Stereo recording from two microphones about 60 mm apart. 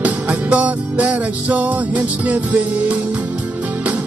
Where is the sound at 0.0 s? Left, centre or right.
Right.